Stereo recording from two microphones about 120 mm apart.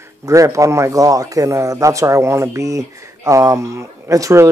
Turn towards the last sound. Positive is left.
turn(degrees=-25)  # may be behind; listen again after turning